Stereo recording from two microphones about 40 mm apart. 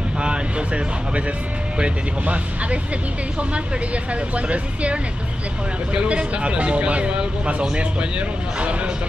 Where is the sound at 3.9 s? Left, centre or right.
Right.